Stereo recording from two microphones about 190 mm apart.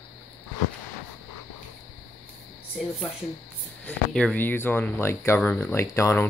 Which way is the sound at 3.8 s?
5° left (ahead or behind).